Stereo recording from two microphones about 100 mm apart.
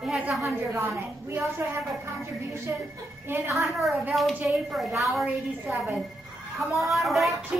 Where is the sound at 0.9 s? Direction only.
Centre (ahead or behind).